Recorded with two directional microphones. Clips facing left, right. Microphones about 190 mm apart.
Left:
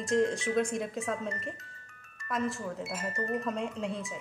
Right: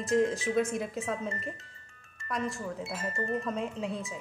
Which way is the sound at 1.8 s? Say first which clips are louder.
Even; 30° right (ahead or behind).